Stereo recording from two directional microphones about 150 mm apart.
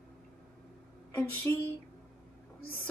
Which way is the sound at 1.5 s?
15° left (ahead or behind).